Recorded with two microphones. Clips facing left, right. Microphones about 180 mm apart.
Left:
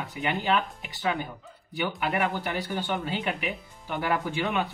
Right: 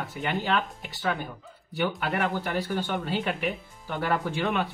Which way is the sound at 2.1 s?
15° left (ahead or behind).